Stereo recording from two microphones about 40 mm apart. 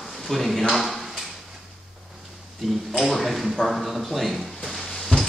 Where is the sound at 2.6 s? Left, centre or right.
Centre.